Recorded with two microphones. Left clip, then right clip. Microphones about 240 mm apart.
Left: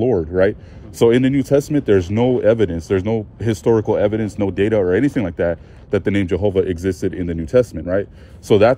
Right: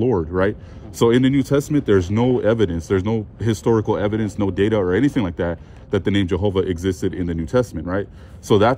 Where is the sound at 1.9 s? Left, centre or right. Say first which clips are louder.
Left 2 dB; right.